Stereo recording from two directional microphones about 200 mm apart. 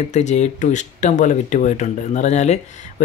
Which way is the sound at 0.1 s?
35° left (ahead or behind).